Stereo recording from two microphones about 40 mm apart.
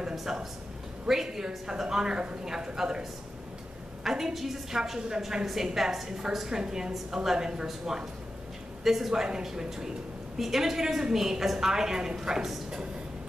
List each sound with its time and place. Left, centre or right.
0.1 s a man's voice: centre